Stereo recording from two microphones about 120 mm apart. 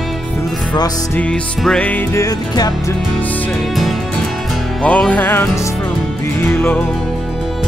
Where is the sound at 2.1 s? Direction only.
30° left (ahead or behind).